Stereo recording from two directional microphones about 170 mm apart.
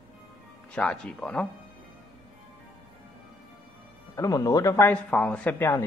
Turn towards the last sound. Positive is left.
turn(degrees=10)  # may be behind; listen again after turning